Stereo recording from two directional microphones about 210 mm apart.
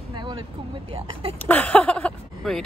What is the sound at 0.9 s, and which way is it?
Speech, 25° right (ahead or behind).